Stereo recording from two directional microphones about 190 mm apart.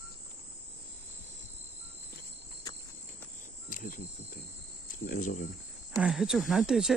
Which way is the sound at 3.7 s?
45° left (ahead or behind).